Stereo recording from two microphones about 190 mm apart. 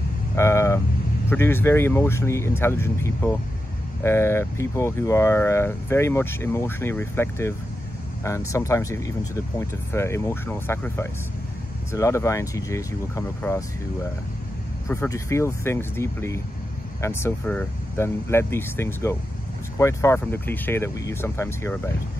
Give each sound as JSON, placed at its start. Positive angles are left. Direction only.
{"t": 0.4, "sound": "vehicle", "side_deg": 15}
{"t": 1.3, "sound": "speech", "side_deg": 10}
{"t": 14.9, "sound": "speech", "side_deg": 15}